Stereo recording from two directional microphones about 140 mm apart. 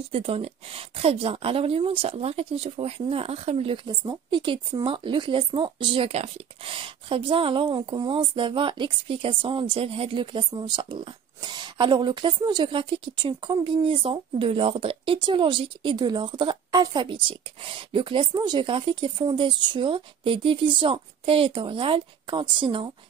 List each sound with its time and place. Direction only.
0.1 s a woman's voice: 45° right (ahead or behind)